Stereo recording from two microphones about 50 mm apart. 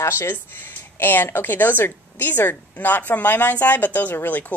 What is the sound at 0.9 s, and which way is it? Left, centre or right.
A woman's voice, left.